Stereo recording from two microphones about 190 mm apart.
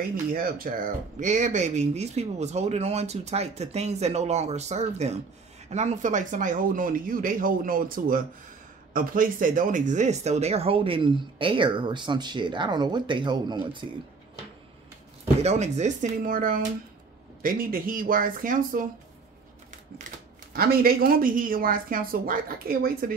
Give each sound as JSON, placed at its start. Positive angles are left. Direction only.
{"t": 0.2, "sound": "speech", "side_deg": -50}
{"t": 15.4, "sound": "speech", "side_deg": -35}
{"t": 20.5, "sound": "speech", "side_deg": -50}